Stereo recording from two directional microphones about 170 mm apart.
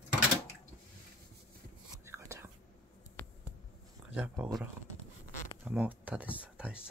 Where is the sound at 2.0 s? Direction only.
15° right (ahead or behind).